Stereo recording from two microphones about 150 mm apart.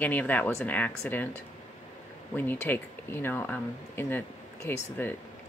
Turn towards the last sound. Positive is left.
turn(degrees=15)  # may be behind; listen again after turning